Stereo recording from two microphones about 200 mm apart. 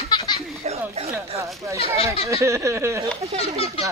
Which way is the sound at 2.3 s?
15° right (ahead or behind).